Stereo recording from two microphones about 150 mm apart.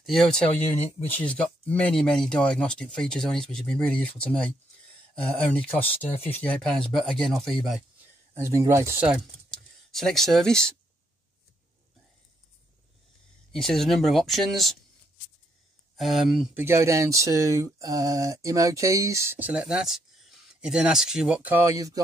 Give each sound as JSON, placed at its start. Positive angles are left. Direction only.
{"t": 0.0, "sound": "speech", "side_deg": 0}
{"t": 8.4, "sound": "speech", "side_deg": -20}
{"t": 9.5, "sound": "speech", "side_deg": 0}
{"t": 13.5, "sound": "speech", "side_deg": 0}
{"t": 16.0, "sound": "speech", "side_deg": 0}
{"t": 16.5, "sound": "speech", "side_deg": -15}